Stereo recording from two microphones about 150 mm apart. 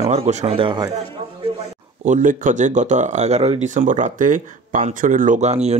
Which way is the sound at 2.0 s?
60° right (ahead or behind).